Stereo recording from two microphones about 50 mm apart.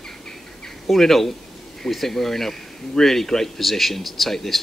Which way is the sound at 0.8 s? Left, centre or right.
Centre.